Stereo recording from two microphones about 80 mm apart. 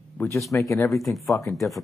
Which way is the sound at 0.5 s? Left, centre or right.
Left.